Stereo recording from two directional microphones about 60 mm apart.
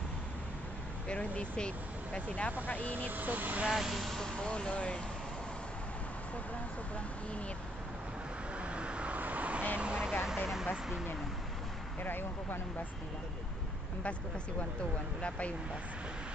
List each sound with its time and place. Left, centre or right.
1.0 s speech: centre
3.1 s speech: right
3.7 s speech: centre
8.5 s vehicle: centre
9.8 s speech: centre
12.0 s speech: left
15.2 s speech: left